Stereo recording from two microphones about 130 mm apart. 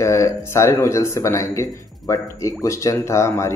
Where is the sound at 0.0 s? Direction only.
25° left (ahead or behind).